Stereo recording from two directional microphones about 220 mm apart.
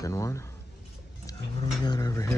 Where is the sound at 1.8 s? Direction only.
15° left (ahead or behind).